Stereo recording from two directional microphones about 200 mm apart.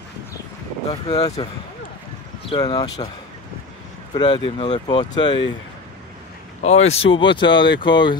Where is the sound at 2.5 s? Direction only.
20° left (ahead or behind).